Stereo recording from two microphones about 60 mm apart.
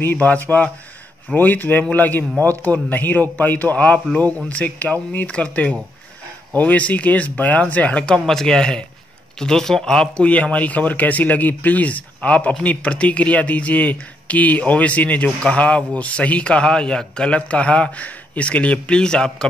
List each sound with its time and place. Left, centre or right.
0.0 s speech: left; by 10.2 s centre
10.2 s speech: left